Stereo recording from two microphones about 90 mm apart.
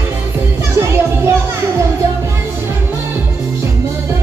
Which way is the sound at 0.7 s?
30° right (ahead or behind).